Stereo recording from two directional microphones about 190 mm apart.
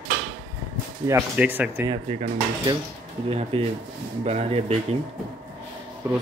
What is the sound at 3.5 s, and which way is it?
Speech, 30° right (ahead or behind).